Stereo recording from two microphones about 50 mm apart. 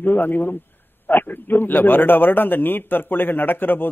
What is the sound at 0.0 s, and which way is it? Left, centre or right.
A man's voice, left.